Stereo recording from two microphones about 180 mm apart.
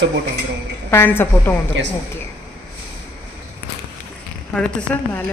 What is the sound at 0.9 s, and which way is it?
Speech, 10° left (ahead or behind).